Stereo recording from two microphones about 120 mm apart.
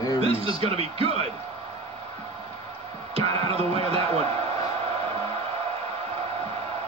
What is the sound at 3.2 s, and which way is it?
Music, 55° right (ahead or behind).